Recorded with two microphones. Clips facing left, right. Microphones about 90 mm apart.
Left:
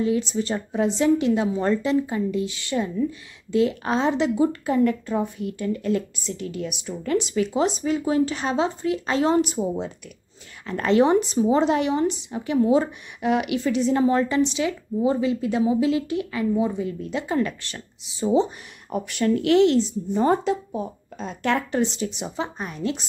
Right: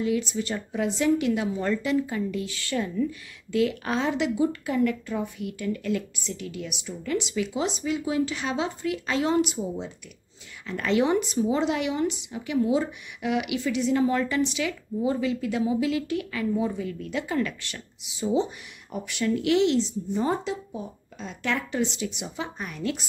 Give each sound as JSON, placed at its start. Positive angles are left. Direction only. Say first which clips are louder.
{"t": 0.0, "sound": "a woman's voice", "louder": "left 3 dB", "side_deg": 30}
{"t": 9.6, "sound": "speech", "louder": "left 5 dB", "side_deg": 55}
{"t": 10.7, "sound": "a woman's voice", "louder": "left 5 dB", "side_deg": 40}